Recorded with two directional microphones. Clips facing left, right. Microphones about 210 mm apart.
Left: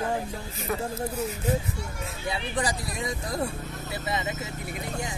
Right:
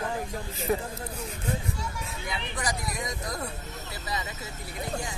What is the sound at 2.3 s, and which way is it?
Speech, 30° left (ahead or behind).